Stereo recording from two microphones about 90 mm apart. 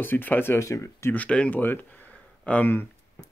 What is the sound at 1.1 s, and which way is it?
Speech, 15° left (ahead or behind).